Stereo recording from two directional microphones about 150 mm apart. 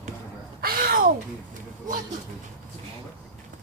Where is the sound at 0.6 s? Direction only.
85° right.